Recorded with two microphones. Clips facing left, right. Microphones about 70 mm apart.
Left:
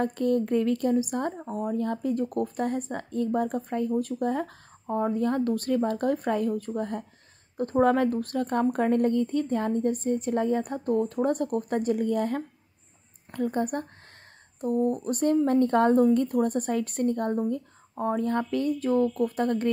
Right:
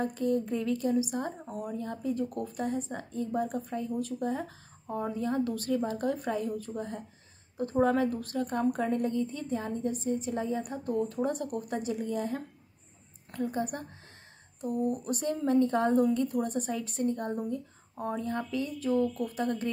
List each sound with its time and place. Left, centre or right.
0.0 s a woman's voice: left
1.4 s speech: left
1.7 s a woman's voice: left
4.8 s a woman's voice: left
14.6 s a woman's voice: left
18.2 s a woman's voice: left